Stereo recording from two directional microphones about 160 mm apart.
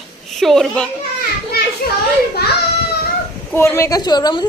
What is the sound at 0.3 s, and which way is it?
Speech, centre (ahead or behind).